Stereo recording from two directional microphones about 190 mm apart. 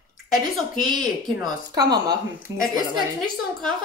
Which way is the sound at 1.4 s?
20° right (ahead or behind).